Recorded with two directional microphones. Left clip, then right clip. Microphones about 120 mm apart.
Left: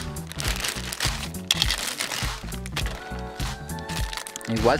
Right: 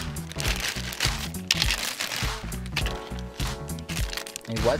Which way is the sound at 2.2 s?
Centre (ahead or behind).